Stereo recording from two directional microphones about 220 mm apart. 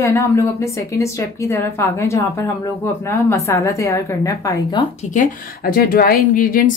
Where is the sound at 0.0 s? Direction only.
15° left (ahead or behind).